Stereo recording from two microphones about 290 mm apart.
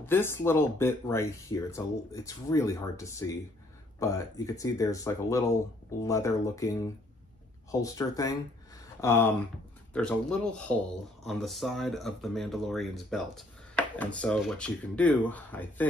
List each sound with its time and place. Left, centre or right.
0.0 s speech: centre